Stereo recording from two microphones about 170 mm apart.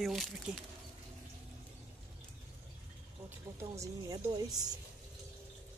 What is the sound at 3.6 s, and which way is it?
A woman's voice, 20° right (ahead or behind).